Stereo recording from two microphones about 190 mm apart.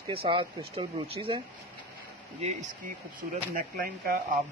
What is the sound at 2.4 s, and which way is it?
Speech, 40° right (ahead or behind).